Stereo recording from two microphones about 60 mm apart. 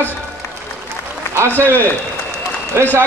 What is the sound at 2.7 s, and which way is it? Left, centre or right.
Speech, right.